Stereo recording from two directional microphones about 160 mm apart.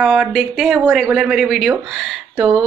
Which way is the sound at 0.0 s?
Centre (ahead or behind).